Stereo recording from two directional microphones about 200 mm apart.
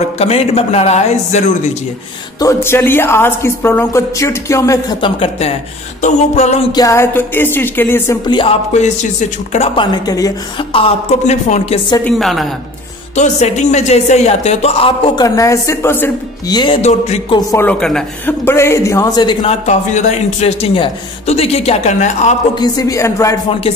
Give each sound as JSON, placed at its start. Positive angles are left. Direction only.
{"t": 0.2, "sound": "speech", "side_deg": 30}
{"t": 2.4, "sound": "speech", "side_deg": 10}
{"t": 6.7, "sound": "speech", "side_deg": 15}
{"t": 8.3, "sound": "speech", "side_deg": 25}
{"t": 10.0, "sound": "a woman's voice", "side_deg": 20}
{"t": 12.0, "sound": "a woman's voice", "side_deg": 0}
{"t": 13.1, "sound": "speech", "side_deg": 35}
{"t": 17.5, "sound": "a woman's voice", "side_deg": 10}
{"t": 22.6, "sound": "speech", "side_deg": 20}